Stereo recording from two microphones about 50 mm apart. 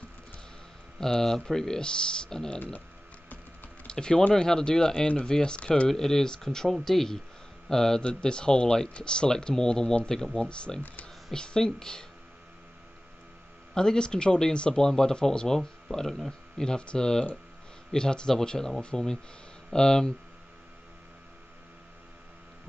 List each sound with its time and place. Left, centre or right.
0.9 s speech: centre
3.8 s typing: centre
4.3 s speech: centre
5.9 s speech: centre
13.7 s speech: centre